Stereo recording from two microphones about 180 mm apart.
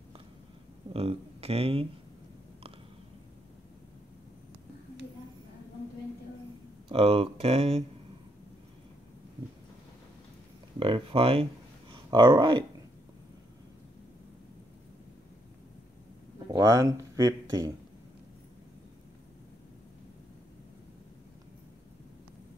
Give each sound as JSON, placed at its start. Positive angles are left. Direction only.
{"t": 0.9, "sound": "a sound", "side_deg": -35}
{"t": 6.9, "sound": "speech", "side_deg": -35}
{"t": 10.8, "sound": "speech", "side_deg": -30}
{"t": 16.4, "sound": "speech", "side_deg": -20}